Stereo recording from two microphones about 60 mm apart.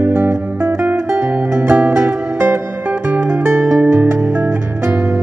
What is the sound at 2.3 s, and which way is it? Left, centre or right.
Music, right.